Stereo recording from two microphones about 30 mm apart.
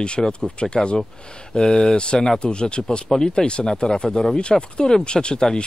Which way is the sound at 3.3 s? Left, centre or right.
Left.